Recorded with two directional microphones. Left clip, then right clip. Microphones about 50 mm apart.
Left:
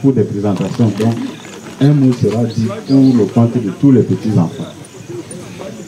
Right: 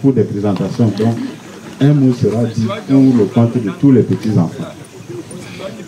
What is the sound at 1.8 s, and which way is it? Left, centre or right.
Speech, centre.